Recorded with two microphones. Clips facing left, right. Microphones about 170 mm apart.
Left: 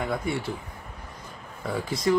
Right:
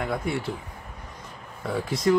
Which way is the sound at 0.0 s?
Centre (ahead or behind).